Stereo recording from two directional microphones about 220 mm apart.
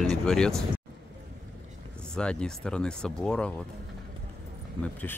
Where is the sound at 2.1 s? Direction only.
5° left (ahead or behind).